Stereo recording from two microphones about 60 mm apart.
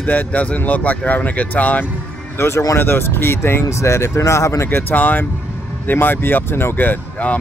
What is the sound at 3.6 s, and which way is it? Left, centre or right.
Speech, left.